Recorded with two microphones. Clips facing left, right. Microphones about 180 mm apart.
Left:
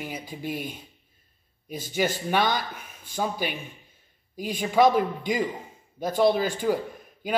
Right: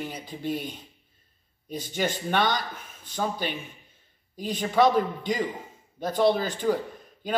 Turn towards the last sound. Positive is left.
turn(degrees=10)  # may be behind; listen again after turning